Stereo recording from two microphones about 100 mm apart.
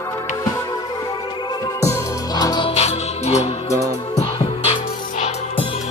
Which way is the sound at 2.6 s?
90° left.